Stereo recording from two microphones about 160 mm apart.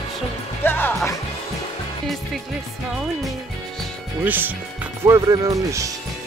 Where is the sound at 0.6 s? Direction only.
15° left (ahead or behind).